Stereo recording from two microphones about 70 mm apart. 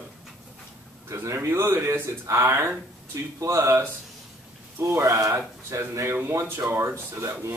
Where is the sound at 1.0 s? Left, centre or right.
Right.